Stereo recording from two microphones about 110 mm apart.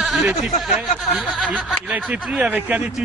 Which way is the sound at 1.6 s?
5° left (ahead or behind).